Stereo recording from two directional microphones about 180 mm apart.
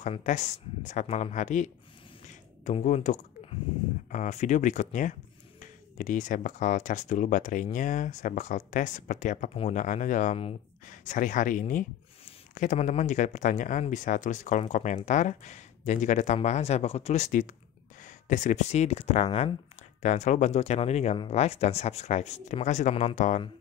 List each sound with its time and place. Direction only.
0.0 s speech: 45° left (ahead or behind)
2.2 s a sound: 45° left (ahead or behind)
4.1 s speech: 40° left (ahead or behind)